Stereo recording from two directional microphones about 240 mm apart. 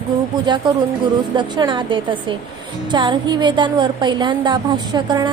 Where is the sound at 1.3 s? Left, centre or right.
Centre.